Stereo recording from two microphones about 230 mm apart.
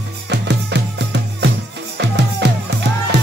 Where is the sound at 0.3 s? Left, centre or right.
Right.